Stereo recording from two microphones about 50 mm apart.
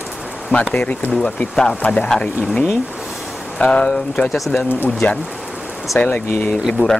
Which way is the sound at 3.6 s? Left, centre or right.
Left.